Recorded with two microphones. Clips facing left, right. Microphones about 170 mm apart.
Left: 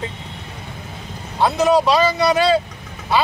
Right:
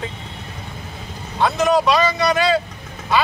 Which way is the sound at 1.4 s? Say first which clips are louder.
Left 1 dB; 10° left (ahead or behind).